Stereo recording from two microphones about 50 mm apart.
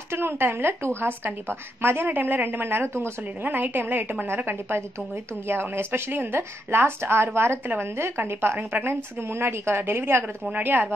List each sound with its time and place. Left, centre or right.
0.1 s speech: right
2.0 s speech: right
3.4 s a woman's voice: right
10.5 s a woman's voice: right